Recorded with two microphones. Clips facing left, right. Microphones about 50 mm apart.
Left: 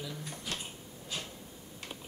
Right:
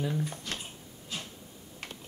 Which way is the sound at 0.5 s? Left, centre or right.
Centre.